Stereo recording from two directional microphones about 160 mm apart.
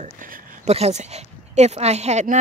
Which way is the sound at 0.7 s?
45° right (ahead or behind).